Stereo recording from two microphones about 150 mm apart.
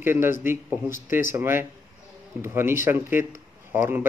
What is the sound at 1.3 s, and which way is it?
Speech, 15° right (ahead or behind).